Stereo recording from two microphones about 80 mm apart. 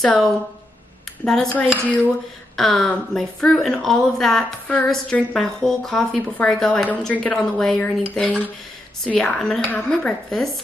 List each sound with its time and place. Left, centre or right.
1.2 s a woman's voice: centre
1.5 s a woman's voice: centre
2.5 s a woman's voice: centre